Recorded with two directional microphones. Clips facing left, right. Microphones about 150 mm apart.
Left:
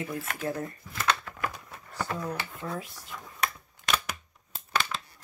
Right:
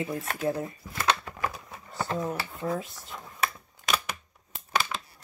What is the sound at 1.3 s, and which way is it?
Typewriter, 25° right (ahead or behind).